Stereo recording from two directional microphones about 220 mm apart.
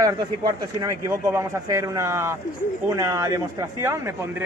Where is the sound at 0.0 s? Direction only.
15° right (ahead or behind).